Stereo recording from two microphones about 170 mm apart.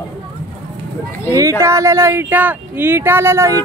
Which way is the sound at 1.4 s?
20° right (ahead or behind).